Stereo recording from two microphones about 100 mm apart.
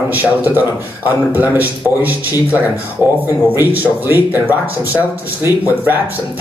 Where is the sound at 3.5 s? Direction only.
20° right (ahead or behind).